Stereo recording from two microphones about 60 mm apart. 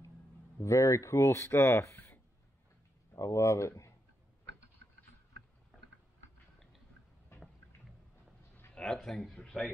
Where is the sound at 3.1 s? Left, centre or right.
Left.